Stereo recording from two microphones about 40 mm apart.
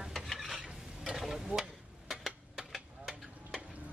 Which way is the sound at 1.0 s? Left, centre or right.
Centre.